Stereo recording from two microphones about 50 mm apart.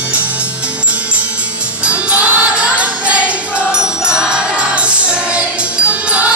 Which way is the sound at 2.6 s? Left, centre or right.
Right.